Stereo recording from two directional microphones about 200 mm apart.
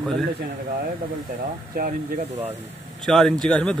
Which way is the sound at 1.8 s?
45° right (ahead or behind).